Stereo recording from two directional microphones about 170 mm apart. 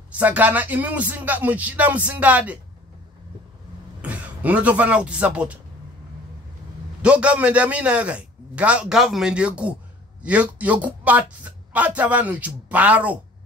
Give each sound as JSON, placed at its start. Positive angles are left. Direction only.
{"t": 0.1, "sound": "a man's voice", "side_deg": -10}
{"t": 4.0, "sound": "speech", "side_deg": -10}
{"t": 7.0, "sound": "a man's voice", "side_deg": -5}